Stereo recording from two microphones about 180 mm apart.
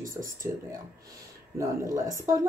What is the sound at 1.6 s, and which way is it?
Speech, 15° right (ahead or behind).